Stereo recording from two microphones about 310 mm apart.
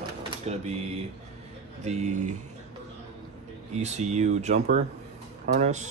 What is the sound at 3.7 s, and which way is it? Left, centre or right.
Speech, right.